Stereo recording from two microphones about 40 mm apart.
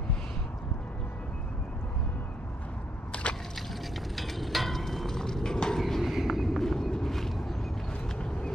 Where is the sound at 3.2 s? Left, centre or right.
Left.